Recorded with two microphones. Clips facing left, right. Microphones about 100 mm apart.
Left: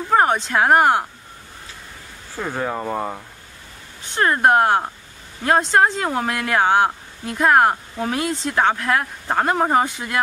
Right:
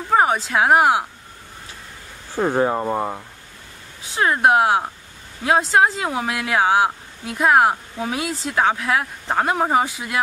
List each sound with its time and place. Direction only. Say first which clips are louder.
0.1 s speech: even; 5° right (ahead or behind)
2.3 s speech: right 7 dB; 30° right (ahead or behind)
2.7 s speech: right 2 dB; 10° right (ahead or behind)